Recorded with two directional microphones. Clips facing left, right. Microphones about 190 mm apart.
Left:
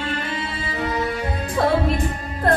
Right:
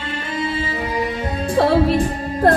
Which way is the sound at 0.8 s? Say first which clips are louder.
Left 3 dB; 15° right (ahead or behind).